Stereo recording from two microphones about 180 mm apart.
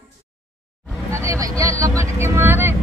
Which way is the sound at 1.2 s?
15° right (ahead or behind).